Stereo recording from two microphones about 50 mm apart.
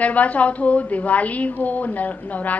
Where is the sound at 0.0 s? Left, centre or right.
Left.